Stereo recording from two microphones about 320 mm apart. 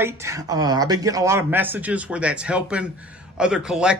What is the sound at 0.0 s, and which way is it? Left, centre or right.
A man's voice, centre.